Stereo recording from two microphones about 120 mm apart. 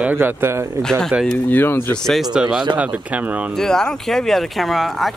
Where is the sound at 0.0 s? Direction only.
15° right (ahead or behind).